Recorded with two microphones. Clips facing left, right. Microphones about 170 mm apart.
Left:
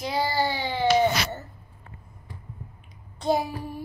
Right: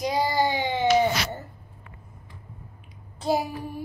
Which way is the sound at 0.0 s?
20° right (ahead or behind).